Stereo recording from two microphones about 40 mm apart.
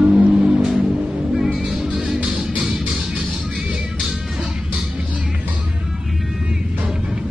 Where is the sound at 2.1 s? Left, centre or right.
Right.